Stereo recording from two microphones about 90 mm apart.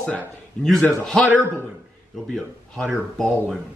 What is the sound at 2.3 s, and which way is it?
Speech, 5° left (ahead or behind).